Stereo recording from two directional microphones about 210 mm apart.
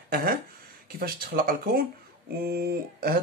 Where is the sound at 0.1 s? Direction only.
45° right (ahead or behind).